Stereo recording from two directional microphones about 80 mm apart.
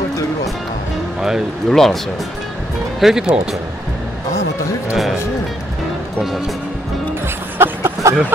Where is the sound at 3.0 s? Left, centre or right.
Centre.